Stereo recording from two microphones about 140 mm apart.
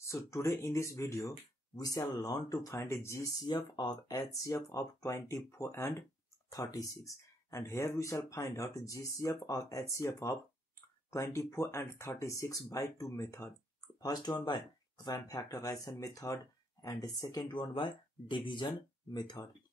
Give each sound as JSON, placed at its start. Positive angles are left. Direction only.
{"t": 0.0, "sound": "speech", "side_deg": 20}
{"t": 3.5, "sound": "speech", "side_deg": 30}